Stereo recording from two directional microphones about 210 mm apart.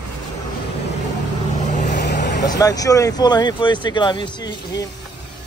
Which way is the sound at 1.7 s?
35° left (ahead or behind).